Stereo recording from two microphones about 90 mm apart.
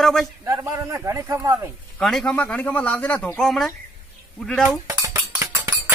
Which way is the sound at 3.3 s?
Centre (ahead or behind).